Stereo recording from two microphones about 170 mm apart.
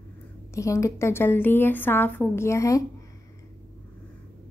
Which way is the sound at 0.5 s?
15° left (ahead or behind).